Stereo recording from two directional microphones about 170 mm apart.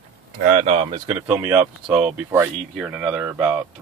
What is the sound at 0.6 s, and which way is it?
Speech, 35° right (ahead or behind).